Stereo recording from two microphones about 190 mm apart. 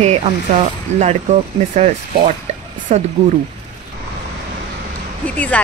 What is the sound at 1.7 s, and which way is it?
A woman's voice, 35° right (ahead or behind).